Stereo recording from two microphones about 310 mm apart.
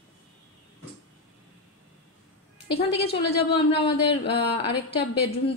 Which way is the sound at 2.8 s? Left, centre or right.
Centre.